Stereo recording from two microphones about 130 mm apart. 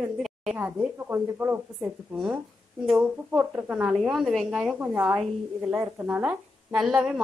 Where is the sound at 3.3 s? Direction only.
15° right (ahead or behind).